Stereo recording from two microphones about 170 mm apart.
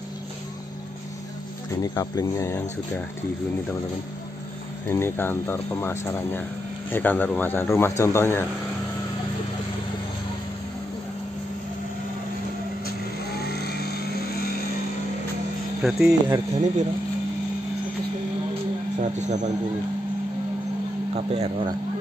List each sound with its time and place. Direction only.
1.8 s speech: 20° left (ahead or behind)
4.9 s speech: 15° left (ahead or behind)
13.4 s vehicle: 70° left (ahead or behind)
15.8 s speech: 5° right (ahead or behind)
16.5 s a man's voice: 45° right (ahead or behind)
18.9 s a man's voice: 45° right (ahead or behind)
21.1 s speech: 35° right (ahead or behind)